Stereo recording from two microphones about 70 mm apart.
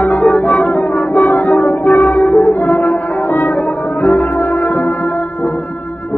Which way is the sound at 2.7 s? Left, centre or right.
Left.